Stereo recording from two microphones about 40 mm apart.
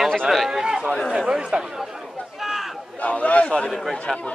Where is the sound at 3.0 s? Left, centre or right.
Left.